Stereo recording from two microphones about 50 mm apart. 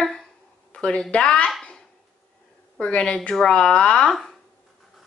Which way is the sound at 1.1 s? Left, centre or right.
Centre.